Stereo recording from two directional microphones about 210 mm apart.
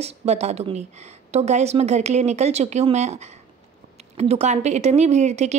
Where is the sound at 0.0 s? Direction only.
30° right (ahead or behind).